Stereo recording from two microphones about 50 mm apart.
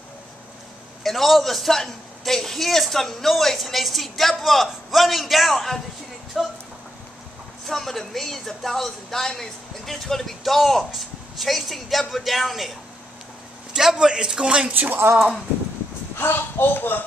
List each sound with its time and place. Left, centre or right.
1.0 s speech: centre
7.6 s speech: centre
13.7 s a man's voice: centre
14.7 s speech: right
16.2 s speech: left